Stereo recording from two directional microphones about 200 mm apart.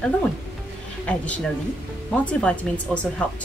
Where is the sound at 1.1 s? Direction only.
5° left (ahead or behind).